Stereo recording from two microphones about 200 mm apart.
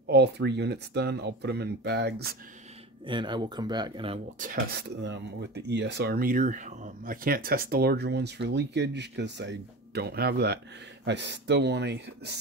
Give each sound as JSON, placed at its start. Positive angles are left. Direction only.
{"t": 0.0, "sound": "speech", "side_deg": -55}
{"t": 3.1, "sound": "speech", "side_deg": -25}
{"t": 4.4, "sound": "speech", "side_deg": -40}
{"t": 5.0, "sound": "speech", "side_deg": -60}